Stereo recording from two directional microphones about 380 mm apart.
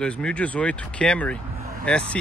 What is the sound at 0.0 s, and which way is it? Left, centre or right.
Speech, centre.